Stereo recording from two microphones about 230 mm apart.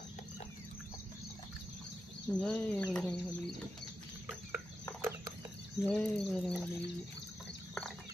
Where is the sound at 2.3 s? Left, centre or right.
Centre.